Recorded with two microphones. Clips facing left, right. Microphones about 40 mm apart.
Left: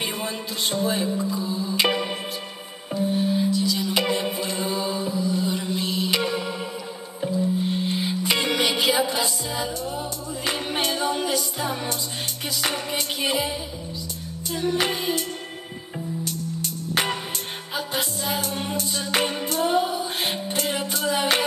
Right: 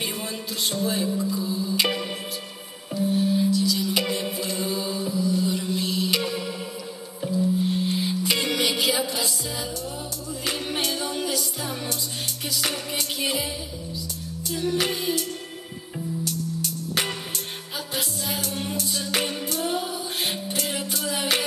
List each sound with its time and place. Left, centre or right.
0.0 s speech: left
1.4 s music: centre
14.5 s music: left
16.3 s music: left